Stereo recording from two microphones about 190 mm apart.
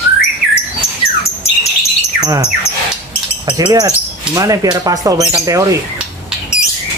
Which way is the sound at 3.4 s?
20° right (ahead or behind).